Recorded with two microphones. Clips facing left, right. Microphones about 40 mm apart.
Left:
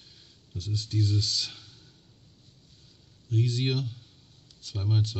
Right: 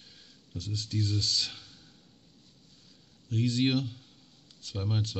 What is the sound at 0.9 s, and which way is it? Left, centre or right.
Speech, left.